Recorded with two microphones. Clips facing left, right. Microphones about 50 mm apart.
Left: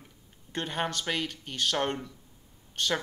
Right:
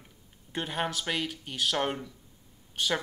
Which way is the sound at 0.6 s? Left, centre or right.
Centre.